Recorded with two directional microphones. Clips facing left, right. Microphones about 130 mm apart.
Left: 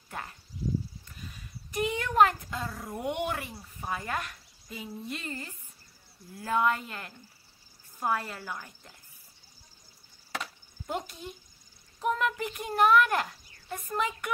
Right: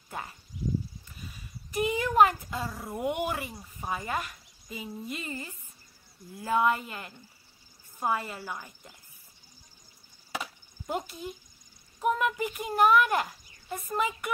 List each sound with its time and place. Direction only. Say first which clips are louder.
0.1 s speech: right 1 dB; 5° right (ahead or behind)
1.0 s dog: even; 5° right (ahead or behind)
3.5 s a woman's voice: right 1 dB; 10° right (ahead or behind)
10.3 s chop: right 1 dB; 5° right (ahead or behind)
12.0 s a woman's voice: right 2 dB; 5° right (ahead or behind)